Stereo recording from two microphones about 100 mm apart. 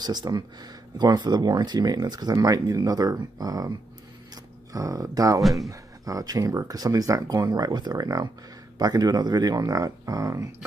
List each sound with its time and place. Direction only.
0.0 s speech: 45° right (ahead or behind)
4.7 s speech: 35° right (ahead or behind)
5.4 s speech: centre (ahead or behind)
5.7 s speech: 35° right (ahead or behind)